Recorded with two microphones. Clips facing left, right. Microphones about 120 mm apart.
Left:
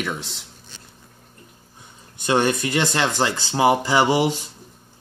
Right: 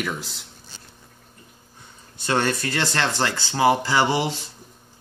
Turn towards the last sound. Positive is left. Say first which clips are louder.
# left 3 dB
turn(degrees=15)  # may be behind; listen again after turning